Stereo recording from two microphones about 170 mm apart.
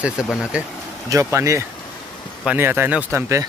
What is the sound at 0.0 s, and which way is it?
Speech, 5° right (ahead or behind).